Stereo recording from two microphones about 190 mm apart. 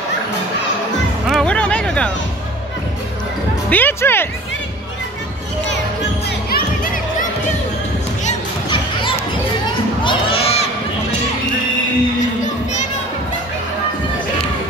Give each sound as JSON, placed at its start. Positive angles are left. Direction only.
{"t": 1.3, "sound": "music", "side_deg": 5}
{"t": 3.7, "sound": "speech", "side_deg": 10}
{"t": 6.5, "sound": "music", "side_deg": 45}
{"t": 10.0, "sound": "crowd", "side_deg": 30}